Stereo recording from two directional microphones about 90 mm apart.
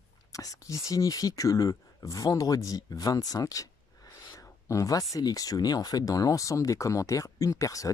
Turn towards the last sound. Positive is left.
turn(degrees=40)  # may be behind; listen again after turning